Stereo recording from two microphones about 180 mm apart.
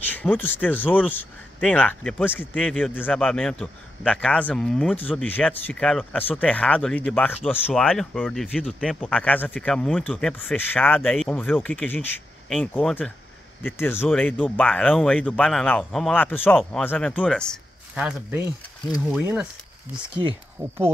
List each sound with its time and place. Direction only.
0.0 s speech: 10° left (ahead or behind)
17.9 s speech: 5° right (ahead or behind)
20.6 s speech: 25° right (ahead or behind)